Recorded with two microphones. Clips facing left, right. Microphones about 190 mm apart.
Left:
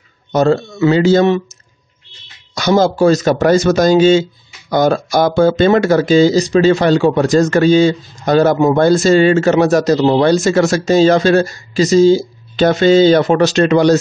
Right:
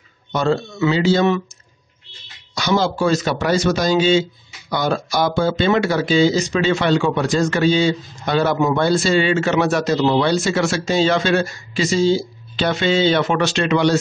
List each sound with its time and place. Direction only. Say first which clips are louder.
0.3 s speech: left 6 dB; 40° left (ahead or behind)
2.5 s a man's voice: left 6 dB; 45° left (ahead or behind)